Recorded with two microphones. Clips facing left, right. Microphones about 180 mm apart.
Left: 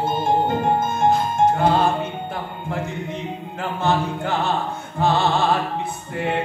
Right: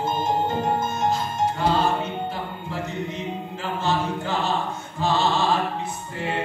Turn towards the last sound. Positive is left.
turn(degrees=55)  # may be behind; listen again after turning